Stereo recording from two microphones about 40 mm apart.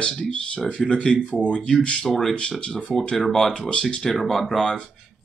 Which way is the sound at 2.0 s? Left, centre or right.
Centre.